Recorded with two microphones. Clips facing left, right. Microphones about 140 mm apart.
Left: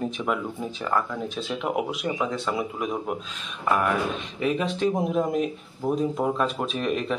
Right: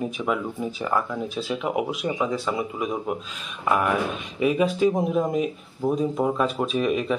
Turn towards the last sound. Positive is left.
turn(degrees=-5)  # may be behind; listen again after turning